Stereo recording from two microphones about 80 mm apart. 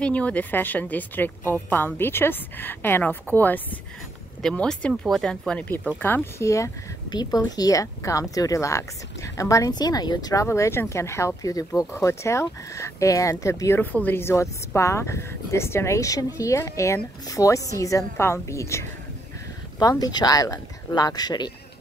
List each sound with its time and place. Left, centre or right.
0.0 s a woman's voice: centre
4.4 s speech: centre
5.9 s a woman's voice: left
6.4 s speech: left
7.1 s speech: left
10.4 s speech: left
13.7 s speech: left
19.8 s speech: left